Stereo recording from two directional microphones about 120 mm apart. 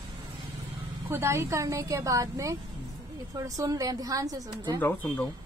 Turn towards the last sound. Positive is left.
turn(degrees=15)  # may be behind; listen again after turning